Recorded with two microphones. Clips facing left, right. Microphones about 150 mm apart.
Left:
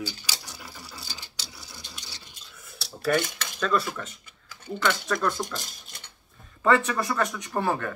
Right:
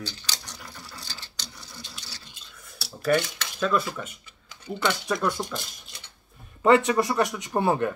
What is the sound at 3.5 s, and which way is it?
Speech, 5° right (ahead or behind).